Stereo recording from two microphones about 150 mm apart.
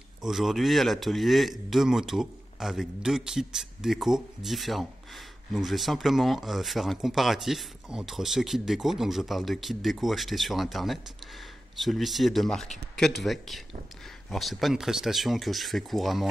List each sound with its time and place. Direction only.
0.2 s speech: centre (ahead or behind)